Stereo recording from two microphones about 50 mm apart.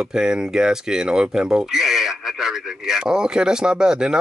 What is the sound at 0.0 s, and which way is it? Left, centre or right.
Speech, centre.